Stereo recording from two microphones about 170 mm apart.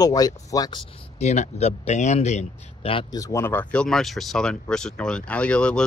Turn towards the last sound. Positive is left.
turn(degrees=5)  # may be behind; listen again after turning